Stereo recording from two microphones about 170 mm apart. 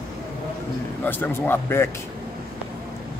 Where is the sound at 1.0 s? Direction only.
10° left (ahead or behind).